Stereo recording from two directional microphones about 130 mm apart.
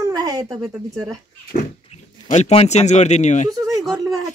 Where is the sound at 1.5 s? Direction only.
90° left.